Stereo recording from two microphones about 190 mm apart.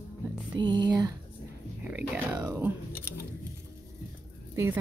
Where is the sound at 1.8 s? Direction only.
5° right (ahead or behind).